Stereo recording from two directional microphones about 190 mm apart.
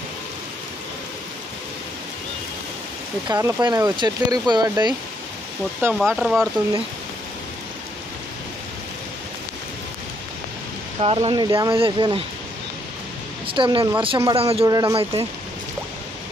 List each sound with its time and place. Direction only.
3.3 s speech: 20° right (ahead or behind)
6.1 s speech: centre (ahead or behind)
11.2 s speech: 25° right (ahead or behind)
13.5 s speech: 25° right (ahead or behind)
14.7 s speech: 20° right (ahead or behind)